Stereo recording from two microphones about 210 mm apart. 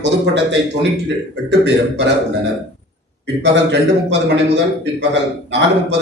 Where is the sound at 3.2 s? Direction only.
55° right (ahead or behind).